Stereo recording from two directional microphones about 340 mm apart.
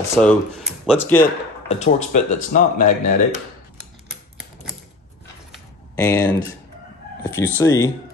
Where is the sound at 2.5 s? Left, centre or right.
Left.